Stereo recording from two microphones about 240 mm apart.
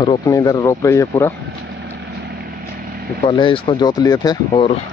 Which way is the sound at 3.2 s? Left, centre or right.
Left.